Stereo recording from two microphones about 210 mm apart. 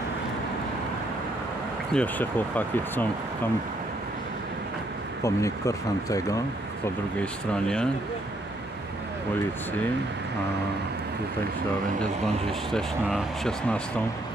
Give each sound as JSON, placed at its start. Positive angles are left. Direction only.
{"t": 2.0, "sound": "speech", "side_deg": 10}
{"t": 5.2, "sound": "speech", "side_deg": 15}
{"t": 7.2, "sound": "speech", "side_deg": 5}
{"t": 12.7, "sound": "speech", "side_deg": 0}